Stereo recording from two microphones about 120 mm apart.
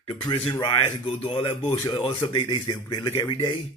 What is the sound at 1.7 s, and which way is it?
Speech, 35° left (ahead or behind).